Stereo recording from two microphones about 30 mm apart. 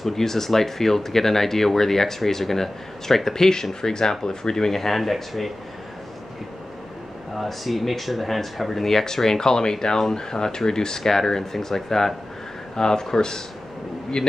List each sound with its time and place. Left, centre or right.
0.0 s speech: centre
7.3 s speech: centre
12.7 s speech: left